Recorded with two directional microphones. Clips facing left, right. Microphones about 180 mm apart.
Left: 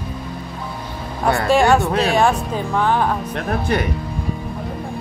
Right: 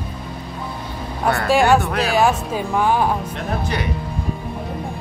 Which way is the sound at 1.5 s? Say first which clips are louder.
Left 1 dB; centre (ahead or behind).